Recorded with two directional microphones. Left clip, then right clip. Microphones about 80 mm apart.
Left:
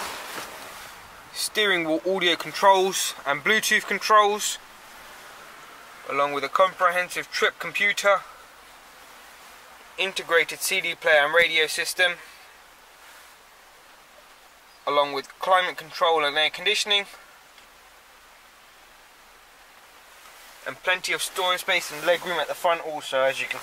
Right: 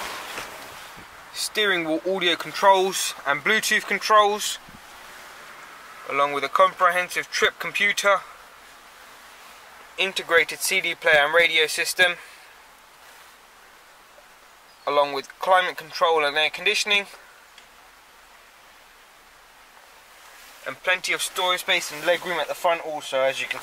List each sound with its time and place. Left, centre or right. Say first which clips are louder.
1.3 s speech: even; centre
6.0 s speech: right 2 dB; centre
9.9 s speech: right 2 dB; centre
14.9 s speech: right 1 dB; centre
20.6 s speech: right 1 dB; centre